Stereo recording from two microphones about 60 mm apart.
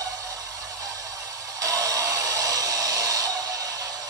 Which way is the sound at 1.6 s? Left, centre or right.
Right.